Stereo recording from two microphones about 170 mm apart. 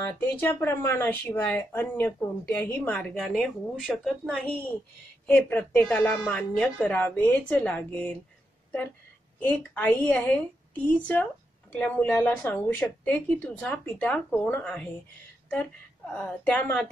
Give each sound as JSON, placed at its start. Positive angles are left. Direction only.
{"t": 0.0, "sound": "speech", "side_deg": 10}
{"t": 9.8, "sound": "speech", "side_deg": 10}
{"t": 16.1, "sound": "speech", "side_deg": 10}